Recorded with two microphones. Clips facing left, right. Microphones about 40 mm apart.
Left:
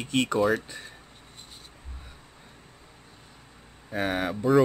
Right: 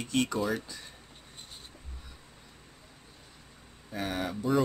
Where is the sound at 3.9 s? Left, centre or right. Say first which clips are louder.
Left 6 dB; left.